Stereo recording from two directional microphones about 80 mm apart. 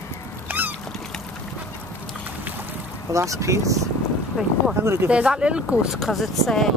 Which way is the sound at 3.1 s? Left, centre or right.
Right.